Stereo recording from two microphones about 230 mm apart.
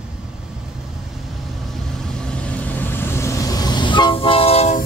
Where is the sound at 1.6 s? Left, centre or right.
Centre.